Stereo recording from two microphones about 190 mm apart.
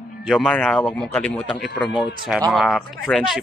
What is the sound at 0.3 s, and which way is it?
A man's voice, 5° left (ahead or behind).